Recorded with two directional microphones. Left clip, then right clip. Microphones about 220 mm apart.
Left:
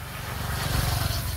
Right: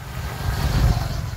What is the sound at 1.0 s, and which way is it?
Vehicle, 40° left (ahead or behind).